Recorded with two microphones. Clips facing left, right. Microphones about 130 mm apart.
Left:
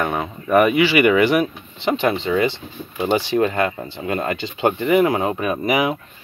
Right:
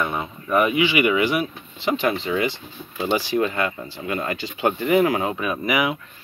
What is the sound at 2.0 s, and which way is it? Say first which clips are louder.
Speech: left 4 dB; 25° left (ahead or behind).